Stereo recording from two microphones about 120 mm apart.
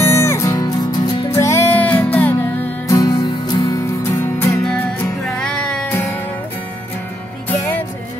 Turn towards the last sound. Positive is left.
turn(degrees=15)  # may be behind; listen again after turning